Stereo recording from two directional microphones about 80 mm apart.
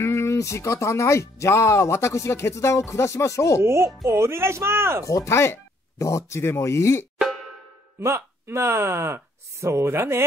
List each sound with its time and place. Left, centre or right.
0.0 s speech: left
3.6 s speech: right
5.0 s speech: left
8.0 s speech: right